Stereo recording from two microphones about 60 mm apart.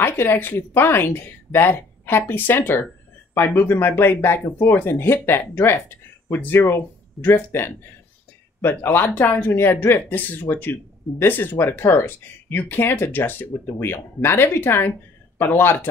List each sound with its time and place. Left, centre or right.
0.0 s speech: left